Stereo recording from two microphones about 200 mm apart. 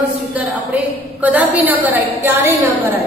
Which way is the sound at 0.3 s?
5° right (ahead or behind).